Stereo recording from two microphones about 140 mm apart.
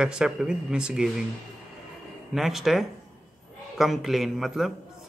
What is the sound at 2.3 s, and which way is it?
Speech, centre (ahead or behind).